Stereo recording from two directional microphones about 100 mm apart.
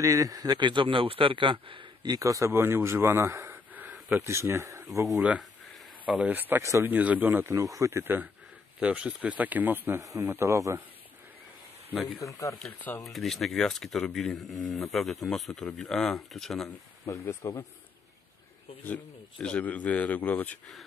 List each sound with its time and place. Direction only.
0.0 s a man's voice: 35° right (ahead or behind); by 1.9 s 60° right (ahead or behind)
2.0 s a man's voice: 35° right (ahead or behind)
6.0 s speech: 15° right (ahead or behind)
6.6 s speech: 30° right (ahead or behind)
6.9 s speech: 15° right (ahead or behind)
7.2 s a man's voice: 25° right (ahead or behind)
10.1 s speech: 30° right (ahead or behind)
12.2 s speech: 30° left (ahead or behind)
13.0 s speech: centre (ahead or behind)
17.0 s speech: 25° left (ahead or behind)
19.4 s speech: 10° left (ahead or behind)